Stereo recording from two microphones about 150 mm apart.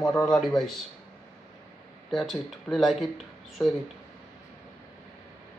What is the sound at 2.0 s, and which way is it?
Speech, centre (ahead or behind).